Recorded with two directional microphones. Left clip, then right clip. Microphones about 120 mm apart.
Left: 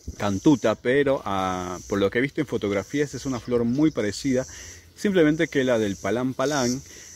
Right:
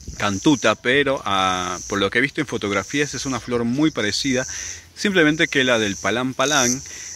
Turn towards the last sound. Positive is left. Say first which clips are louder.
# right 5 dB
turn(degrees=25)  # may be behind; listen again after turning